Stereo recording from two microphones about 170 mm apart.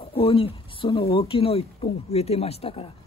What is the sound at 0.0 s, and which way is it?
Speech, 35° left (ahead or behind).